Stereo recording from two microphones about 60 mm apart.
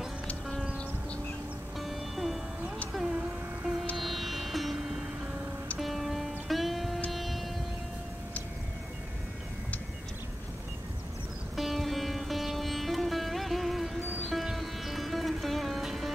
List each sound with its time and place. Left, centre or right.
1.8 s music: centre
2.9 s a sound: centre
3.9 s music: centre
11.5 s music: centre